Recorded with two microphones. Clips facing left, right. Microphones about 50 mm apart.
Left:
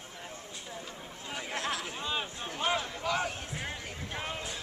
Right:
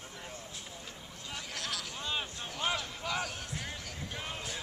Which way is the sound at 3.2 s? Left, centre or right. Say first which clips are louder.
Left 3 dB; left.